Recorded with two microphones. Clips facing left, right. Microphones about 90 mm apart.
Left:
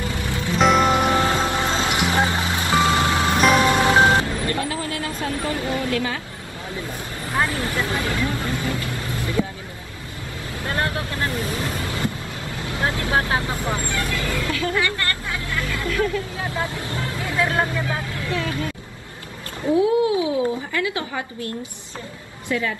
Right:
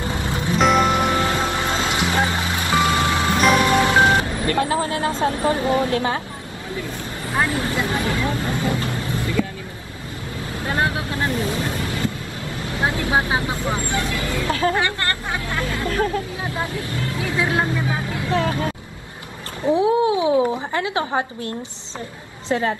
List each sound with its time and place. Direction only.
0.0 s music: 25° right (ahead or behind)
0.6 s music: centre (ahead or behind)
1.1 s music: 25° left (ahead or behind)
1.5 s vehicle: 20° left (ahead or behind)
3.5 s wind chime: 25° left (ahead or behind)
4.6 s vehicle: 30° right (ahead or behind)
7.3 s speech: 20° right (ahead or behind)
10.6 s speech: 20° right (ahead or behind)
12.6 s speech: 25° right (ahead or behind)
14.5 s hubbub: 35° right (ahead or behind)
17.2 s speech: 10° right (ahead or behind)
18.3 s speech: 35° right (ahead or behind)
19.7 s speech: 25° right (ahead or behind)
22.5 s speech: 35° right (ahead or behind)